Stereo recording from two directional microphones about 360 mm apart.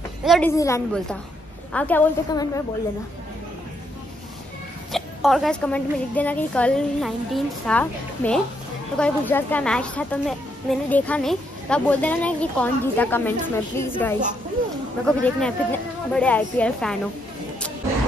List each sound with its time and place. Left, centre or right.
0.2 s a woman's voice: centre
4.9 s a woman's voice: centre